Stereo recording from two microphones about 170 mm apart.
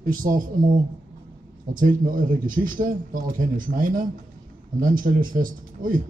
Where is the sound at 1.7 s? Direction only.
55° right (ahead or behind).